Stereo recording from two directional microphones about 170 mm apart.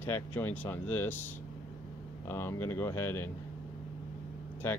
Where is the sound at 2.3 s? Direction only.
15° left (ahead or behind).